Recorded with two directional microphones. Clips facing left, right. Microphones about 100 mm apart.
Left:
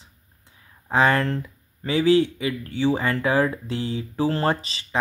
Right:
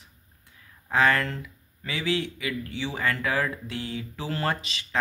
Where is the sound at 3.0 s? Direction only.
25° left (ahead or behind).